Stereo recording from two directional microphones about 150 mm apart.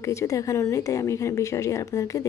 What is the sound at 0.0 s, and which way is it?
A woman's voice, 20° left (ahead or behind).